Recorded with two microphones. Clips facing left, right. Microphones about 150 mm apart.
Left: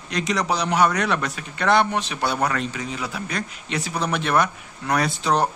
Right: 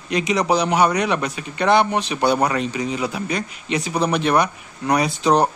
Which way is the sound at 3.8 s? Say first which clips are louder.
Right 5 dB; 20° right (ahead or behind).